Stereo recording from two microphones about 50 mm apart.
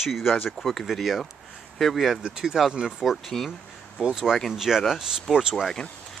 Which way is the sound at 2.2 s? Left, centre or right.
Centre.